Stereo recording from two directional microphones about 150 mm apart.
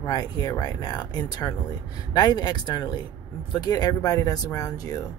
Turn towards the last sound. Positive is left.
turn(degrees=20)  # may be behind; listen again after turning